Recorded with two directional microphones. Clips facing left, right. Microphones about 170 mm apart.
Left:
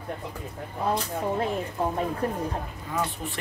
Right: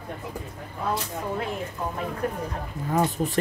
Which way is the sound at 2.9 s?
40° right (ahead or behind).